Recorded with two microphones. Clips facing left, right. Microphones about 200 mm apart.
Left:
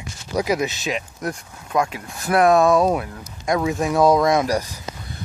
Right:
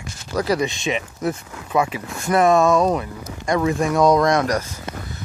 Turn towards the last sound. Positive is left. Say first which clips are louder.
# even
turn(degrees=10)  # may be behind; listen again after turning